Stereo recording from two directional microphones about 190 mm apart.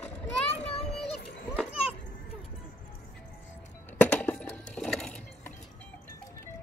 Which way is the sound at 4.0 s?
5° left (ahead or behind).